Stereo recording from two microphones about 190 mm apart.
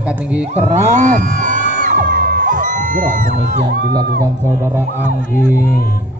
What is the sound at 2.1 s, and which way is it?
Music, 50° right (ahead or behind).